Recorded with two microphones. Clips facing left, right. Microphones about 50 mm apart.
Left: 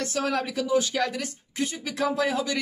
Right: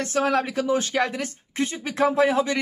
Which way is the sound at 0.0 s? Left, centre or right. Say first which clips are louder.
Right 5 dB; right.